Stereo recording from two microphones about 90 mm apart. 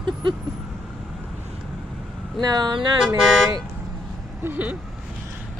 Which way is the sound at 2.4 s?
50° right (ahead or behind).